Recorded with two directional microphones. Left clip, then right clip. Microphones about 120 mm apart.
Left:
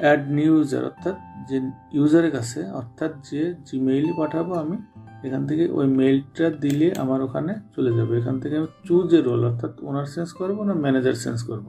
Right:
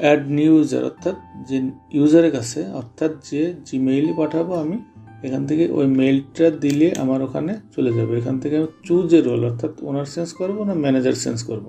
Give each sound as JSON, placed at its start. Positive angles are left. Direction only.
{"t": 0.0, "sound": "speech", "side_deg": -20}